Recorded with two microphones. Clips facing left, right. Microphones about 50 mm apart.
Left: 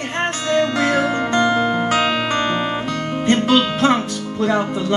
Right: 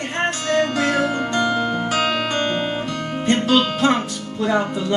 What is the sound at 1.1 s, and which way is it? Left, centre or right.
Music, left.